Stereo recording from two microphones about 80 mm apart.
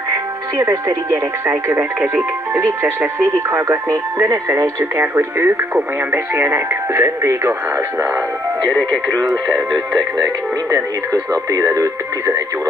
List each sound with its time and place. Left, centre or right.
0.1 s speech: right
4.9 s speech: right
9.9 s speech: right
11.5 s speech: right